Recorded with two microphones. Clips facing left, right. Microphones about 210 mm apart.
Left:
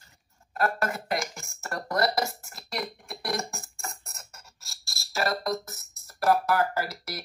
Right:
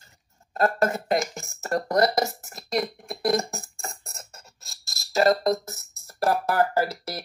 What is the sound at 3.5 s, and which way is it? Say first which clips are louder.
Music: right 3 dB; 30° right (ahead or behind).